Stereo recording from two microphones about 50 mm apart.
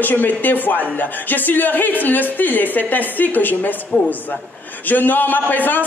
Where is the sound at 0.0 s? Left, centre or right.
Left.